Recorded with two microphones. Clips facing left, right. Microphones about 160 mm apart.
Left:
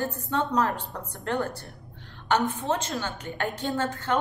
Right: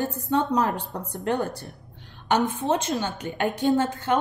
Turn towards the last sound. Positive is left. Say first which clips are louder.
# right 5 dB
turn(degrees=-15)  # may be behind; listen again after turning